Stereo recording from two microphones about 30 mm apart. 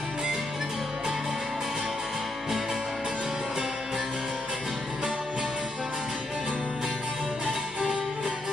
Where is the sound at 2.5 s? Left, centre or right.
Centre.